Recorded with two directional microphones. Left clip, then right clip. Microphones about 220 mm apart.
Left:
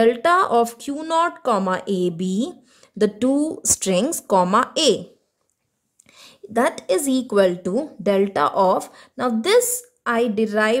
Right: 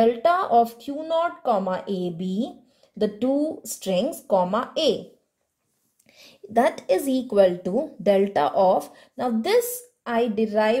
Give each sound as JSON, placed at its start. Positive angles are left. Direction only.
{"t": 0.0, "sound": "a woman's voice", "side_deg": 30}
{"t": 6.1, "sound": "a woman's voice", "side_deg": 15}